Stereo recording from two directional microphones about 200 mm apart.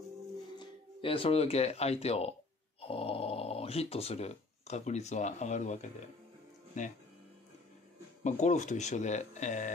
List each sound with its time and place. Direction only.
0.6 s speech: 25° left (ahead or behind)
8.2 s speech: 35° left (ahead or behind)